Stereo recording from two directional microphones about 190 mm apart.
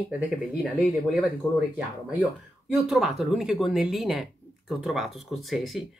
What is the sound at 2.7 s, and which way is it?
Speech, centre (ahead or behind).